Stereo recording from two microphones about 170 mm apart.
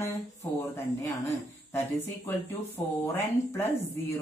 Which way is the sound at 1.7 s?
15° left (ahead or behind).